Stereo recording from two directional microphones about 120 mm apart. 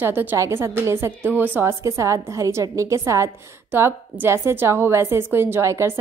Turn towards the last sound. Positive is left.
turn(degrees=-25)  # may be behind; listen again after turning